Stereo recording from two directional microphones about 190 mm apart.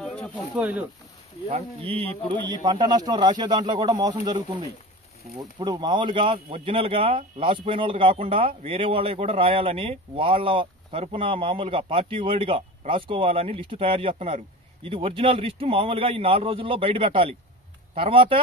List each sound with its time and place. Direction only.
0.0 s snake: 5° left (ahead or behind)
0.6 s speech: 10° right (ahead or behind)
1.5 s speech: 30° right (ahead or behind)